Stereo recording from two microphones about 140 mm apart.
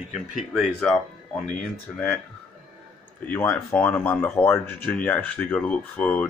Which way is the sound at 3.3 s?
15° left (ahead or behind).